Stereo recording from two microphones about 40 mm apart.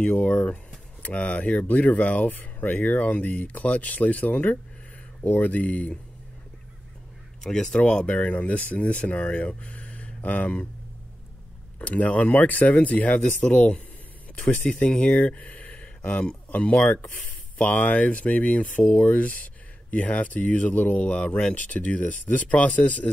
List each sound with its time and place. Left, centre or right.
0.0 s speech: left
7.4 s speech: centre
7.8 s speech: left
11.8 s speech: left
14.4 s speech: left
14.7 s speech: left
15.1 s a sound: left
16.0 s speech: left